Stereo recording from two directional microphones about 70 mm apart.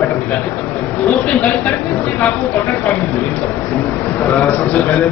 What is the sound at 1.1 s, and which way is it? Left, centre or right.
Speech, left.